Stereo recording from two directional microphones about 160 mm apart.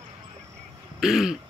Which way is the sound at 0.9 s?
5° right (ahead or behind).